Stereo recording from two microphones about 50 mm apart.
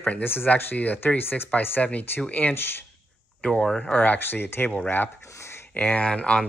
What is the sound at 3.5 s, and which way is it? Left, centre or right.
Speech, centre.